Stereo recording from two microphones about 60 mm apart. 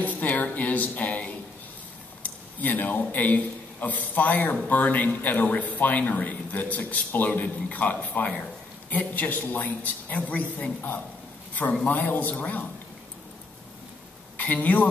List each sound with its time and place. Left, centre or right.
0.0 s a sound: left
2.2 s a man's voice: left
14.3 s a woman's voice: left